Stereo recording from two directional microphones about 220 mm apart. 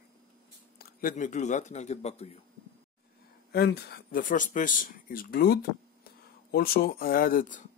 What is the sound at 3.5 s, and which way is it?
Speech, 45° left (ahead or behind).